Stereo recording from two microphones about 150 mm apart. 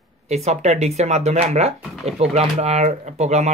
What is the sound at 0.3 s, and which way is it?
Speech, 45° right (ahead or behind).